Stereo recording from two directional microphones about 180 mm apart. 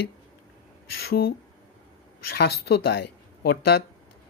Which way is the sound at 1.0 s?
60° left (ahead or behind).